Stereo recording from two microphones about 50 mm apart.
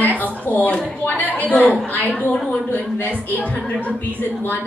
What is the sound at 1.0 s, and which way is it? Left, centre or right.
Speech, left.